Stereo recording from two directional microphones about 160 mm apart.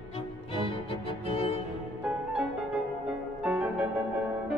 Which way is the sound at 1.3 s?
35° left (ahead or behind).